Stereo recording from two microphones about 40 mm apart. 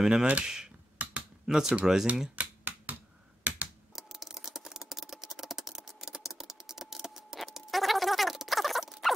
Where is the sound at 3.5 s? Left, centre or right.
Right.